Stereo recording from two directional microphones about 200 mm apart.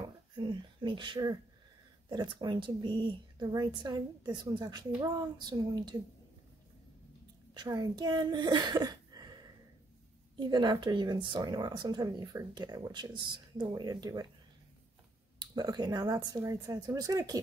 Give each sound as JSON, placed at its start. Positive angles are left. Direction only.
{"t": 0.4, "sound": "speech", "side_deg": -20}
{"t": 7.5, "sound": "a woman's voice", "side_deg": -20}
{"t": 10.4, "sound": "speech", "side_deg": -20}
{"t": 15.5, "sound": "a woman's voice", "side_deg": -20}